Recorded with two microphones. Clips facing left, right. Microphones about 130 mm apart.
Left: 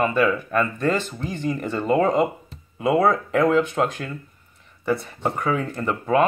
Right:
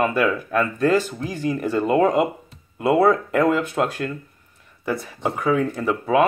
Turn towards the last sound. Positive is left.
turn(degrees=-5)  # may be behind; listen again after turning